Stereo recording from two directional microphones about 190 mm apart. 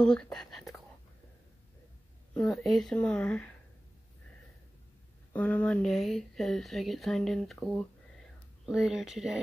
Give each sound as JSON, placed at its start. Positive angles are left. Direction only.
{"t": 0.0, "sound": "speech", "side_deg": 5}
{"t": 2.3, "sound": "speech", "side_deg": 5}
{"t": 5.3, "sound": "speech", "side_deg": 5}